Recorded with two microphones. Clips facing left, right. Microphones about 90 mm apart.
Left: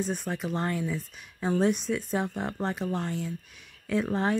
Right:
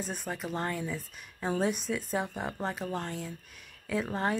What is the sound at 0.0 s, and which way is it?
Speech, centre (ahead or behind).